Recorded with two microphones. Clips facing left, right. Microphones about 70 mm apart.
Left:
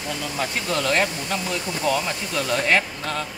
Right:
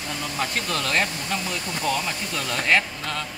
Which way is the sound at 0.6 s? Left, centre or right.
Left.